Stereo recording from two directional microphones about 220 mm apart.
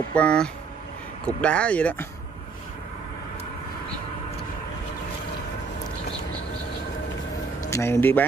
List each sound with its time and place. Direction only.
0.1 s speech: 5° left (ahead or behind)
7.7 s speech: 10° left (ahead or behind)